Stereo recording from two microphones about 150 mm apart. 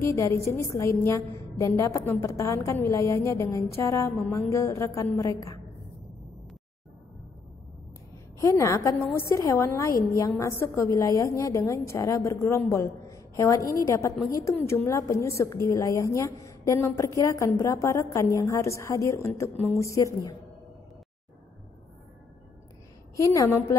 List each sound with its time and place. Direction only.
0.0 s a woman's voice: 20° left (ahead or behind)
8.4 s a woman's voice: 20° left (ahead or behind)
23.1 s a woman's voice: 20° left (ahead or behind)